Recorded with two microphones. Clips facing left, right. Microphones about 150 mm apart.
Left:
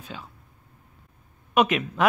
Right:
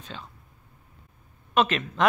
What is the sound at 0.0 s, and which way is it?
Speech, 10° left (ahead or behind).